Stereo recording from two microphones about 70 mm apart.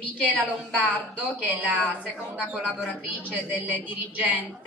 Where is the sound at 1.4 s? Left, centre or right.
Right.